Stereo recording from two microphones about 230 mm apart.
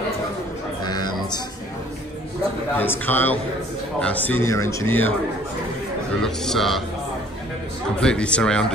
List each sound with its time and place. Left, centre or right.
0.8 s a sound: centre
2.8 s speech: centre
6.2 s speech: centre
8.0 s speech: centre